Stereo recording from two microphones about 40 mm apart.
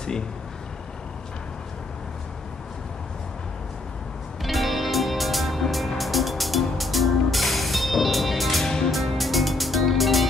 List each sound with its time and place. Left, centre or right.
4.4 s music: centre